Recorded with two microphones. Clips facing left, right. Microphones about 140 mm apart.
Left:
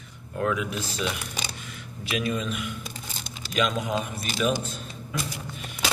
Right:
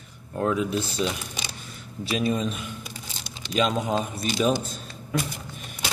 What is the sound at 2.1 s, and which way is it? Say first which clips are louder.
A man's voice: right 3 dB; 35° right (ahead or behind).